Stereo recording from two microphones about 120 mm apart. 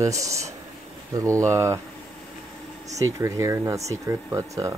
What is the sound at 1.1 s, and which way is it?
Speech, 25° right (ahead or behind).